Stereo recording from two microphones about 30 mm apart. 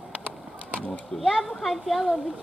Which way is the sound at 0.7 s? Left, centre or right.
Left.